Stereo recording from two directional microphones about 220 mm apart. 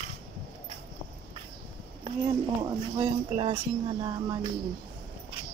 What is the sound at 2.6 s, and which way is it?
Speech, 15° right (ahead or behind).